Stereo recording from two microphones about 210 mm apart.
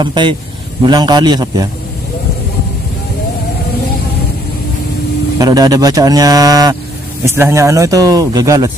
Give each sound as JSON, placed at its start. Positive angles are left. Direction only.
{"t": 0.0, "sound": "a man's voice", "side_deg": -20}
{"t": 5.4, "sound": "speech", "side_deg": -20}